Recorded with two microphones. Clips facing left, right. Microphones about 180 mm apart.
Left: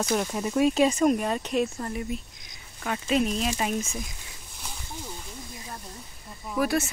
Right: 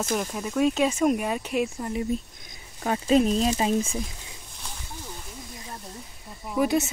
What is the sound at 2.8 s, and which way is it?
Speech, 35° right (ahead or behind).